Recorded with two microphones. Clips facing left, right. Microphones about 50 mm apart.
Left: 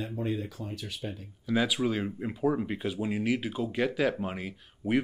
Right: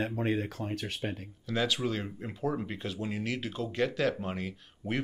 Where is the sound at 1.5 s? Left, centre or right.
Centre.